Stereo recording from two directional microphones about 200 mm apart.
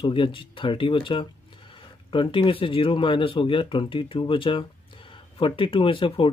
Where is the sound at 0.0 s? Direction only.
25° left (ahead or behind).